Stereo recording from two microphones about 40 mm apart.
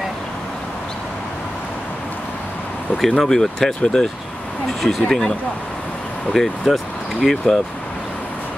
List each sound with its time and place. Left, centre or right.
3.1 s speech: centre
6.3 s speech: centre